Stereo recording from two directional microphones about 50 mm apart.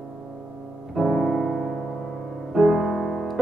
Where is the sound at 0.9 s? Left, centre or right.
Centre.